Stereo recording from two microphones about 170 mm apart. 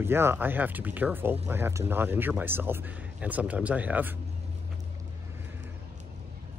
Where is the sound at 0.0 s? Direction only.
15° right (ahead or behind).